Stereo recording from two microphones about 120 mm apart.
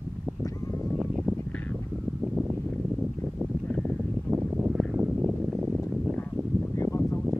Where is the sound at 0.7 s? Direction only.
15° left (ahead or behind).